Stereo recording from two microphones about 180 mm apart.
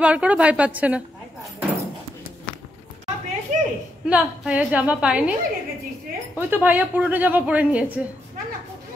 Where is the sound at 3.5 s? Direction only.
40° right (ahead or behind).